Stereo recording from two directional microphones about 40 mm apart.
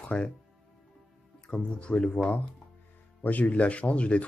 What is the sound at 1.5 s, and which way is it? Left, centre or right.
Speech, left.